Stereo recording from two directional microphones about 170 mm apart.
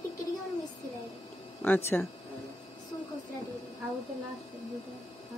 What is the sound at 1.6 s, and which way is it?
Speech, 10° left (ahead or behind).